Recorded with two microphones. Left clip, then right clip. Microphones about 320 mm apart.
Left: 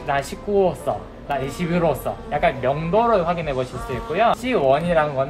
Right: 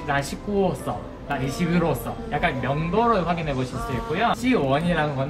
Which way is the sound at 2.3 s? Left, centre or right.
Left.